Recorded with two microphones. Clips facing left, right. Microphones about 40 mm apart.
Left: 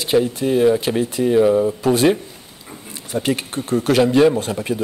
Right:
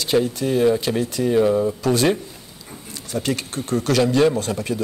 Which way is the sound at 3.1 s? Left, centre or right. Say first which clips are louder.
Left 3 dB; left.